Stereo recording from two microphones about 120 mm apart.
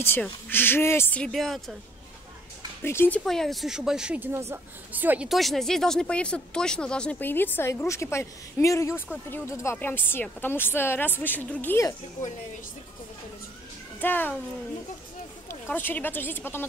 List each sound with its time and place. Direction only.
0.2 s speech: 15° left (ahead or behind)
1.2 s a woman's voice: centre (ahead or behind)
2.8 s speech: 20° left (ahead or behind)
3.3 s speech: centre (ahead or behind); by 5.3 s 15° right (ahead or behind)
5.3 s speech: centre (ahead or behind)
14.0 s speech: 15° left (ahead or behind)
15.4 s speech: 20° left (ahead or behind)